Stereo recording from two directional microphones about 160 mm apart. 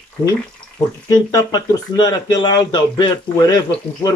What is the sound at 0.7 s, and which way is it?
Speech, 25° left (ahead or behind).